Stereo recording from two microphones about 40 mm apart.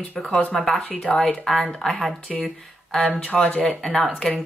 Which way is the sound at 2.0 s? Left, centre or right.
Centre.